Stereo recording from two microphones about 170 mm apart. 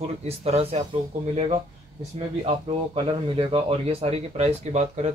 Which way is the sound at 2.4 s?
30° right (ahead or behind).